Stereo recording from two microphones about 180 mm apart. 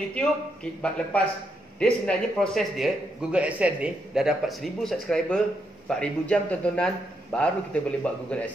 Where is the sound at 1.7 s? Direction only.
5° left (ahead or behind).